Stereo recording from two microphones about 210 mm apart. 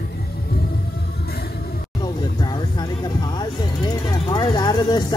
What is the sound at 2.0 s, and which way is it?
Music, 20° left (ahead or behind).